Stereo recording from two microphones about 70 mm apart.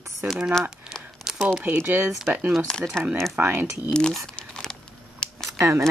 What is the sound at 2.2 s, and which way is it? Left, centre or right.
Speech, right.